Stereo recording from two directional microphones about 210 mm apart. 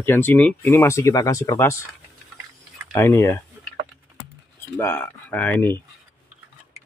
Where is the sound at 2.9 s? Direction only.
15° left (ahead or behind).